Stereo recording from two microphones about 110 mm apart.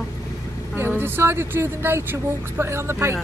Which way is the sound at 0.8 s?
20° right (ahead or behind).